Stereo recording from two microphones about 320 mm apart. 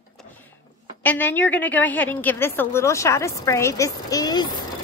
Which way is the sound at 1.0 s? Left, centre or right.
Centre.